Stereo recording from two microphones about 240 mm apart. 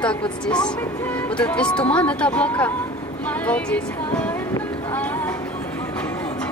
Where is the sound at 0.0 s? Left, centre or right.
Centre.